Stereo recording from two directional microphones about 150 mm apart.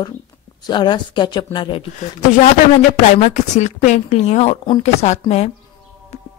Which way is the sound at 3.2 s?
50° left (ahead or behind).